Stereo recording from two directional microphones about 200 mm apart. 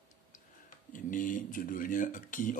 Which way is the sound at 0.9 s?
40° left (ahead or behind).